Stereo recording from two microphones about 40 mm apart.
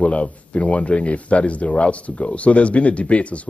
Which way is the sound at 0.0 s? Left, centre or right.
Left.